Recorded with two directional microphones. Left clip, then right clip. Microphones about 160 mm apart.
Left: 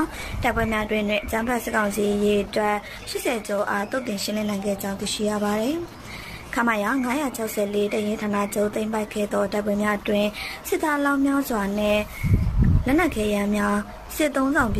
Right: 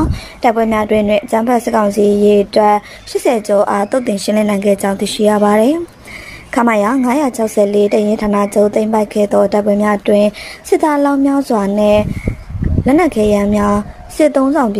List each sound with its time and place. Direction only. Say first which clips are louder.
0.4 s a woman's voice: right 11 dB; 30° right (ahead or behind)